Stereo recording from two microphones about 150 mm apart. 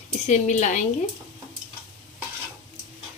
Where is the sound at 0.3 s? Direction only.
50° left (ahead or behind).